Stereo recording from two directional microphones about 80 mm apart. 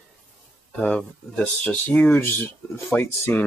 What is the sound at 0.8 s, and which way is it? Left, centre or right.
Speech, centre.